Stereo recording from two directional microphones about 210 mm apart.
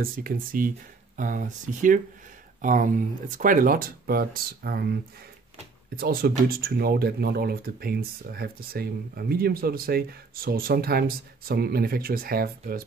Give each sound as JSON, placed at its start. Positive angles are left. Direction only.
{"t": 0.0, "sound": "speech", "side_deg": -45}
{"t": 5.9, "sound": "speech", "side_deg": -45}